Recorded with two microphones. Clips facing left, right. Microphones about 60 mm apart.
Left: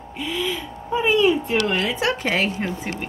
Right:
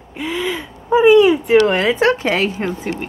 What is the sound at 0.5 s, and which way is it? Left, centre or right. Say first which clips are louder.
Speech: right 7 dB; right.